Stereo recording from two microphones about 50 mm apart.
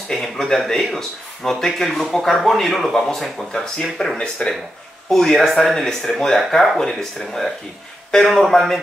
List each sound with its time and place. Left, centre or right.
0.1 s speech: centre
4.2 s speech: left
5.1 s speech: centre